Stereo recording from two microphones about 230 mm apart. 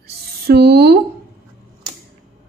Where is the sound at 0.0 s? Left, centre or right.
Right.